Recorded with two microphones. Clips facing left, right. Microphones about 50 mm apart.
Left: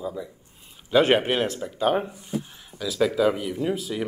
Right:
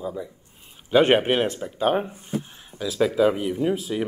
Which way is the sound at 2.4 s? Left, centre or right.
Centre.